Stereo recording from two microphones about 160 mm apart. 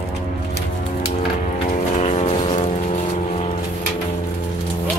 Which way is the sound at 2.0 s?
40° left (ahead or behind).